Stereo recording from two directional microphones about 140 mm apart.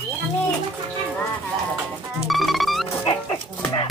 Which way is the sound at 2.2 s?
Centre (ahead or behind).